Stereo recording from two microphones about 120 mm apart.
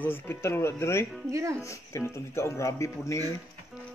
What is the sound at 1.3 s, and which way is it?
Speech, 25° right (ahead or behind).